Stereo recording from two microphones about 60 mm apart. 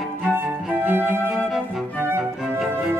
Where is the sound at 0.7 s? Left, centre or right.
Right.